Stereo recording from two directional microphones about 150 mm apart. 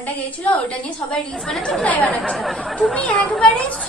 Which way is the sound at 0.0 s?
10° left (ahead or behind).